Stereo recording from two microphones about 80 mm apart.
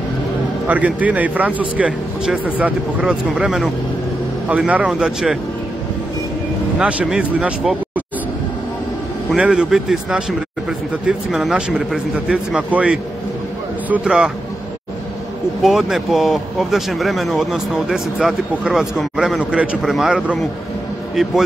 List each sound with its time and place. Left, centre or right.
0.7 s speech: centre
6.8 s speech: centre
9.3 s speech: centre
11.2 s speech: centre
14.0 s speech: centre
15.6 s speech: centre